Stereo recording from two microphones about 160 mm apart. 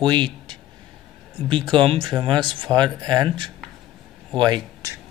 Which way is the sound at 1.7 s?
30° right (ahead or behind).